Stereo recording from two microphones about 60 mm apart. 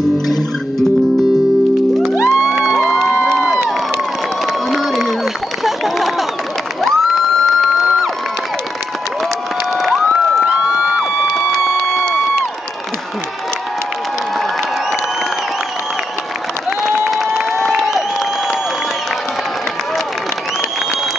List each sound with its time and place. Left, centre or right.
2.2 s music: centre
4.6 s crowd: centre
5.6 s a sound: centre
6.8 s crowd: centre
10.7 s a sound: centre
12.0 s crowd: centre
17.4 s crowd: centre